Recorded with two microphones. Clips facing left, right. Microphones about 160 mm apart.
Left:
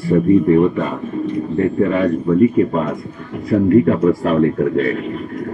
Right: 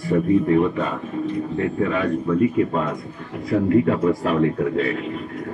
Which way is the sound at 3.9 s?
45° left (ahead or behind).